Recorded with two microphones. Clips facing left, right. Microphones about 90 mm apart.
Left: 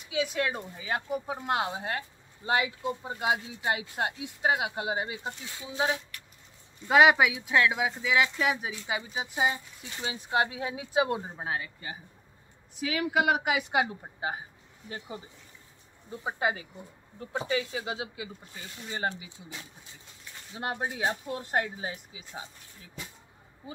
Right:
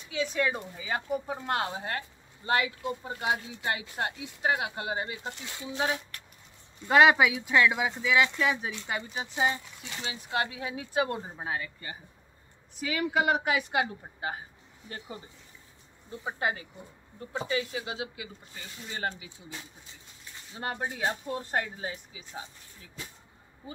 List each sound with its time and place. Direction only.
0.1 s speech: 10° left (ahead or behind)
14.9 s speech: 5° left (ahead or behind)
17.7 s speech: 25° left (ahead or behind)
20.5 s speech: 10° left (ahead or behind)